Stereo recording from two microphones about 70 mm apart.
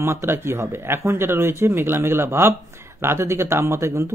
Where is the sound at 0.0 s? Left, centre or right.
Right.